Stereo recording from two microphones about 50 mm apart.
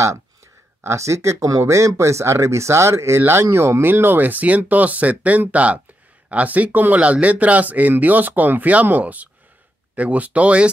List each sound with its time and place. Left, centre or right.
0.8 s speech: right